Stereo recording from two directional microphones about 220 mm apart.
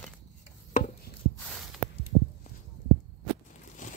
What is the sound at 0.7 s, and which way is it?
Chopping, 35° left (ahead or behind).